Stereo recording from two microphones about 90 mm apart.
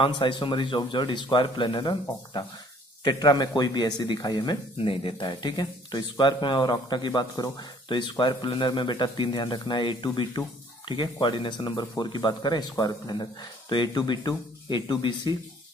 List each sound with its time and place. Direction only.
0.0 s speech: 60° left (ahead or behind)
4.7 s speech: 75° left (ahead or behind)
5.2 s speech: 50° left (ahead or behind)